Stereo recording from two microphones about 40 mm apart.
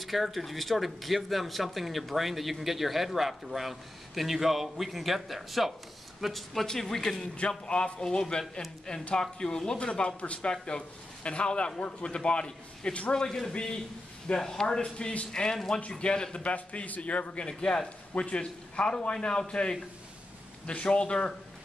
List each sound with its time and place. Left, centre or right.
0.0 s speech: centre
7.3 s a man's voice: left
16.4 s a man's voice: left
17.5 s a man's voice: centre
18.1 s a man's voice: left